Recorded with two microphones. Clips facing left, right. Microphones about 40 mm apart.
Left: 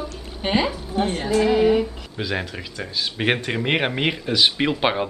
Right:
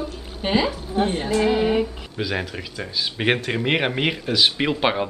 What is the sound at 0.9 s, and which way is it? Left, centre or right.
A woman's voice, centre.